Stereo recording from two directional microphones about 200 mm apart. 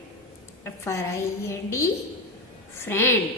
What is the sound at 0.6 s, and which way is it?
A woman's voice, 15° left (ahead or behind).